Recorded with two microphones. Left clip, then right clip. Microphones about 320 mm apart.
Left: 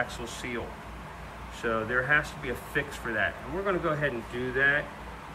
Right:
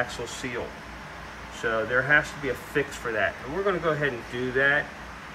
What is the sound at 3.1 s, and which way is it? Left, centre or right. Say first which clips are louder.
Speech: right 3 dB; centre.